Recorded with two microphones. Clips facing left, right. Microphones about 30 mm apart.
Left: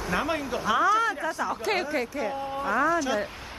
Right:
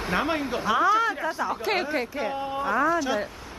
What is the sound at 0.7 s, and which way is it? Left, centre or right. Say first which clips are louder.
Speech: right 1 dB; centre.